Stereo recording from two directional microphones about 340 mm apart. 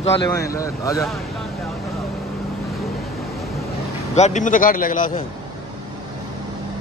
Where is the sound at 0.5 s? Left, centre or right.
Centre.